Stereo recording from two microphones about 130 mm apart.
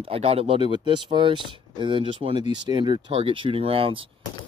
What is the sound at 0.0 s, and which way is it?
Speech, 50° right (ahead or behind).